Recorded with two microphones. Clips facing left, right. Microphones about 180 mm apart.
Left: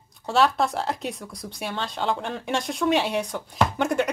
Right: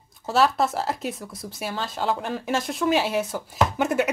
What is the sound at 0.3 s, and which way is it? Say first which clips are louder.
Speech: even; centre (ahead or behind).